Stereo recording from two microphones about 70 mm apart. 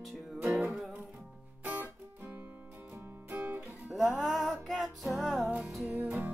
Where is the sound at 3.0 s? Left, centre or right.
Right.